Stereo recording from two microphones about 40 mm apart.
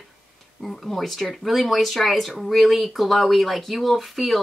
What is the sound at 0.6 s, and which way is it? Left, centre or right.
Speech, centre.